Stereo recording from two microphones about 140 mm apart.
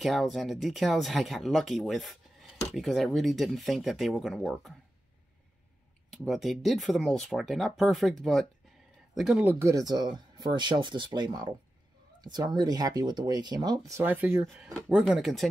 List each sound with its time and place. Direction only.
0.0 s speech: centre (ahead or behind)
6.2 s speech: centre (ahead or behind); by 14.0 s 25° right (ahead or behind)
14.0 s speech: 15° right (ahead or behind)
14.4 s speech: centre (ahead or behind)